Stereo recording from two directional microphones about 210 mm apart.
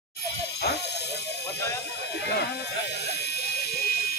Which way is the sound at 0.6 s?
50° left (ahead or behind).